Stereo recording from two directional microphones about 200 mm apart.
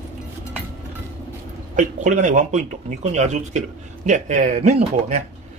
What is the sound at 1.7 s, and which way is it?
Speech, 40° right (ahead or behind).